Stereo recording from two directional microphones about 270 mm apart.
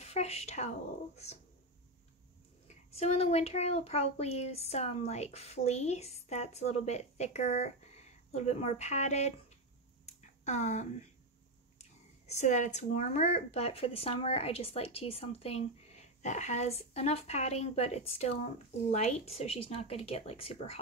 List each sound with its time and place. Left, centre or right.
0.0 s speech: left
2.7 s speech: left
10.0 s a sound: left
11.8 s speech: left